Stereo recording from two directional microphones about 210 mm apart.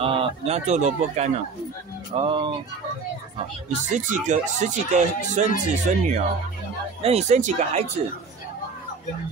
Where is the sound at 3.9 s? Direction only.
35° right (ahead or behind).